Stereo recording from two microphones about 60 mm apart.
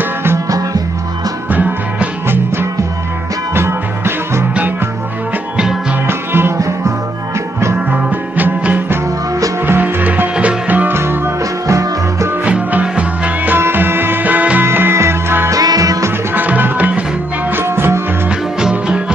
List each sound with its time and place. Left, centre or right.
1.5 s music: right
2.2 s music: right
6.0 s music: right
7.9 s music: right
10.9 s music: right
11.6 s music: right
12.4 s music: right
13.6 s music: right
14.7 s music: right
15.5 s music: right
16.3 s music: right
17.5 s music: right
18.6 s music: centre